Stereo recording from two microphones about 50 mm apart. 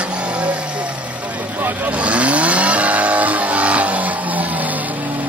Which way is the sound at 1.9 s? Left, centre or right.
Right.